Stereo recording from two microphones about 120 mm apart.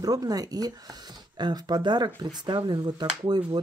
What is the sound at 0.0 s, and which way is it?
Speech, 30° right (ahead or behind).